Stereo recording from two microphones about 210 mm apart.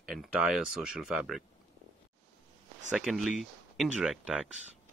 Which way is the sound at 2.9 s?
Centre (ahead or behind).